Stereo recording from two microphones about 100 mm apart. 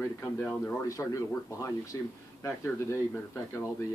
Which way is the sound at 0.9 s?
35° left (ahead or behind).